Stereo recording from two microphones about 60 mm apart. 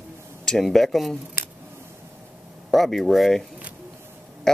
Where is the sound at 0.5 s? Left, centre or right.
Centre.